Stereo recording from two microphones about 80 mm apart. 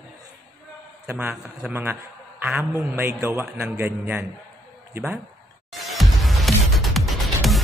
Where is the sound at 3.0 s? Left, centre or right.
Right.